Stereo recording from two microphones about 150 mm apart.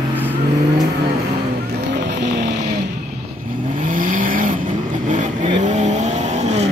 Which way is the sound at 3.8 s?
60° right (ahead or behind).